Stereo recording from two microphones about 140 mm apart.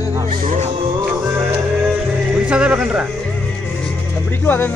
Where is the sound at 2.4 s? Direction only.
10° right (ahead or behind).